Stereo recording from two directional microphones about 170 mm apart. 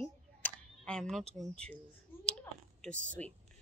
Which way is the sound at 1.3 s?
Centre (ahead or behind).